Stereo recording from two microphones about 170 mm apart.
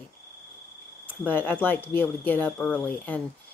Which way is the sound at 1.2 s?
10° left (ahead or behind).